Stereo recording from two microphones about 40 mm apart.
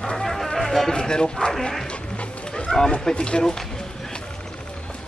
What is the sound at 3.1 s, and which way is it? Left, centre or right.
Speech, left.